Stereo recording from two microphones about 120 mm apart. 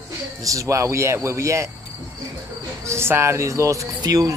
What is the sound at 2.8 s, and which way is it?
Speech, 20° right (ahead or behind).